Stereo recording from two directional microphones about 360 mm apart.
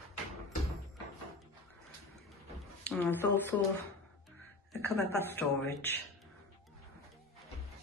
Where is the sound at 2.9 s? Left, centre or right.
Centre.